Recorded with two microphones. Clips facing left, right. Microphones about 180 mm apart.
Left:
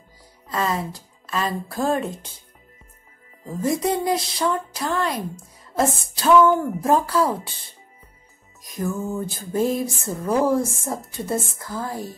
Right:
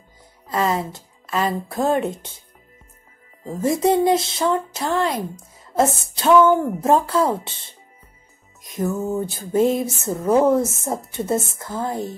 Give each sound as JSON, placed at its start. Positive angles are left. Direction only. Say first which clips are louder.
{"t": 0.5, "sound": "speech", "louder": "right 3 dB", "side_deg": -25}
{"t": 3.4, "sound": "a woman's voice", "louder": "right 4 dB", "side_deg": -25}
{"t": 8.6, "sound": "a woman's voice", "louder": "right 3 dB", "side_deg": -20}